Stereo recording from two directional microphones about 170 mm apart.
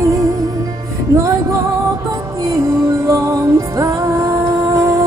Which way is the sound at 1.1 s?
20° right (ahead or behind).